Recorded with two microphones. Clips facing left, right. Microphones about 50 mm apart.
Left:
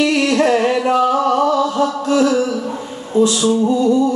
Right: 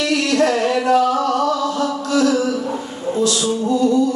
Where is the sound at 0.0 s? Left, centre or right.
Left.